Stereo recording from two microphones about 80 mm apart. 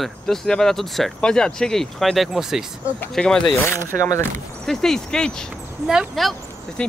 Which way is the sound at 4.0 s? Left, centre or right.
Left.